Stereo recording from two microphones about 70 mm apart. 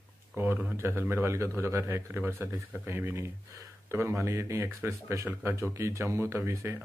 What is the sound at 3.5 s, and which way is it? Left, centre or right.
Speech, right.